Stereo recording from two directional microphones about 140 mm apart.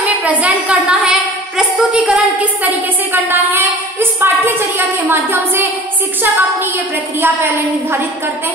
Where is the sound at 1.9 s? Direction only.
10° right (ahead or behind).